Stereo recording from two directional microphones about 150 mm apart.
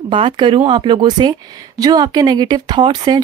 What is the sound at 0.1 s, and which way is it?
Speech, 35° right (ahead or behind).